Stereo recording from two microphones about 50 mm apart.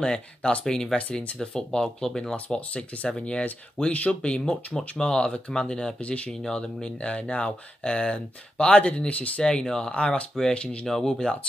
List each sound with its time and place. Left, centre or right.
0.0 s speech: left
2.3 s speech: left
9.4 s speech: centre
10.9 s speech: centre